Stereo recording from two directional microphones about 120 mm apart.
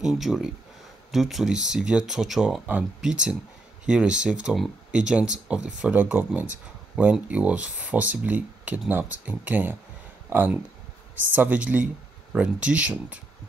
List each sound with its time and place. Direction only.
0.0 s speech: centre (ahead or behind)